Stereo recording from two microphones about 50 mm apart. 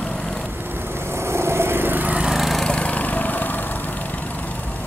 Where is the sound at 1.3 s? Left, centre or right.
Right.